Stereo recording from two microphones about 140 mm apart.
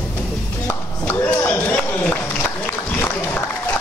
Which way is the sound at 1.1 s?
20° left (ahead or behind).